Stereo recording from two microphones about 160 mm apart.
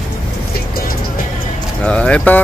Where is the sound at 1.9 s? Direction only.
5° left (ahead or behind).